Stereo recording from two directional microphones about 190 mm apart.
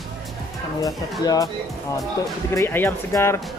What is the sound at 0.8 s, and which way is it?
Speech, 20° left (ahead or behind).